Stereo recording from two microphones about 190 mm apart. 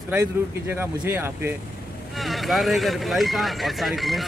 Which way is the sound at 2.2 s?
Centre (ahead or behind).